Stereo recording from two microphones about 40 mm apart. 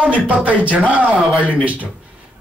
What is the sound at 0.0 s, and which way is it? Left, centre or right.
Speech, right.